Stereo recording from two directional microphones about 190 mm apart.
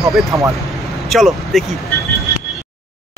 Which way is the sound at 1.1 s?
Centre (ahead or behind).